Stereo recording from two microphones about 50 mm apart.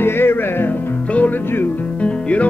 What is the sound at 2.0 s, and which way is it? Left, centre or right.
Music, left.